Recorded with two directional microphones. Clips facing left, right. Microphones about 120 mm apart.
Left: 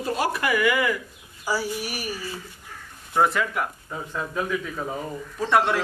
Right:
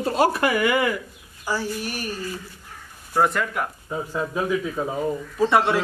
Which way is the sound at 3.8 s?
15° right (ahead or behind).